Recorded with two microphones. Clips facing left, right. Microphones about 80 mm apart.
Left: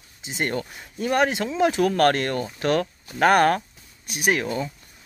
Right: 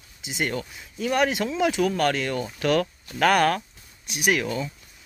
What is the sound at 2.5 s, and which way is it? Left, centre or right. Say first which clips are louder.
Speech: right 2 dB; left.